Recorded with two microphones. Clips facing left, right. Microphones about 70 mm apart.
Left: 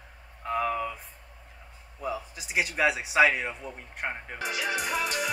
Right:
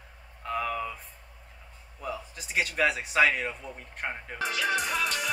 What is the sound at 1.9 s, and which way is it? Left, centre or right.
Speech, centre.